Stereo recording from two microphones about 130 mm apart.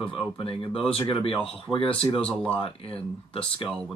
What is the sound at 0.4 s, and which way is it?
Speech, 45° left (ahead or behind).